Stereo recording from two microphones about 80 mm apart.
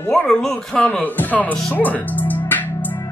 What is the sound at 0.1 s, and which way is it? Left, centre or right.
Speech, centre.